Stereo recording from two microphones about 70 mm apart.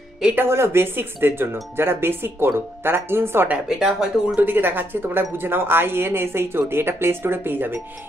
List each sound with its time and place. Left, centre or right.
0.5 s speech: right
3.6 s speech: centre
4.4 s speech: right